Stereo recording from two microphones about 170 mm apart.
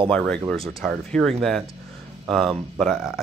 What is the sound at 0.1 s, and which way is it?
Speech, 5° left (ahead or behind).